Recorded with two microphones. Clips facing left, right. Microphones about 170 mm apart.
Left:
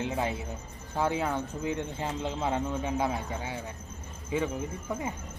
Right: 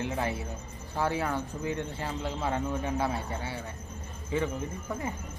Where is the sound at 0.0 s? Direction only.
20° left (ahead or behind).